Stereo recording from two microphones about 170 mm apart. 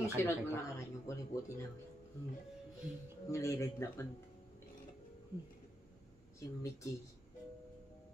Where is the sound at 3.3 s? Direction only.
15° left (ahead or behind).